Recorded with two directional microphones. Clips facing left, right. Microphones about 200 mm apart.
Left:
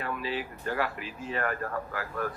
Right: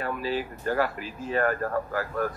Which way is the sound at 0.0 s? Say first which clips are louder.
Right 4 dB; 40° right (ahead or behind).